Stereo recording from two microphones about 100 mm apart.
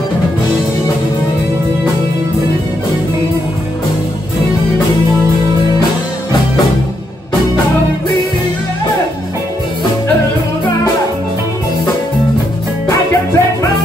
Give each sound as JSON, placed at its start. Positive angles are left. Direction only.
{"t": 13.1, "sound": "music", "side_deg": 30}